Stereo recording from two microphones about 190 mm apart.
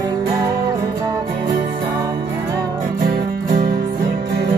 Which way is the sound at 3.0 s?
50° right (ahead or behind).